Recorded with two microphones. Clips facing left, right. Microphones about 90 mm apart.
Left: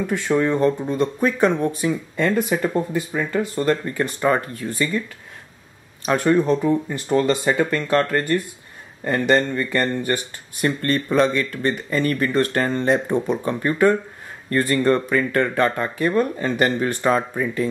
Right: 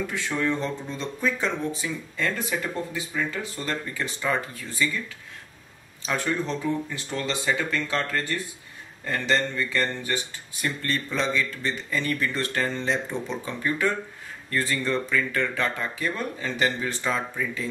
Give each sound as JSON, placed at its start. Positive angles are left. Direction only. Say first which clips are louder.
{"t": 0.0, "sound": "speech", "louder": "left 7 dB", "side_deg": 50}
{"t": 6.0, "sound": "speech", "louder": "left 10 dB", "side_deg": 50}